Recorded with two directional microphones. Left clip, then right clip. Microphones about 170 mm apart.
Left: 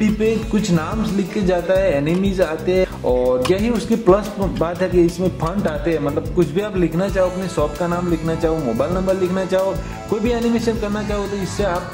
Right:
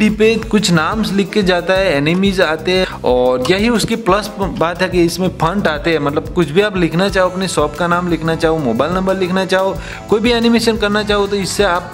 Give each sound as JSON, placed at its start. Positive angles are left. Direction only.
{"t": 0.0, "sound": "a man's voice", "side_deg": -40}
{"t": 10.0, "sound": "a man's voice", "side_deg": -30}